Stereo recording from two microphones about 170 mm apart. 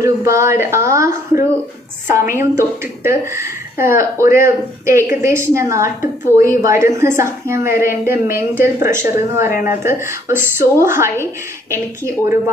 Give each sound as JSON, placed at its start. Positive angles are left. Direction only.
{"t": 0.0, "sound": "a woman's voice", "side_deg": -15}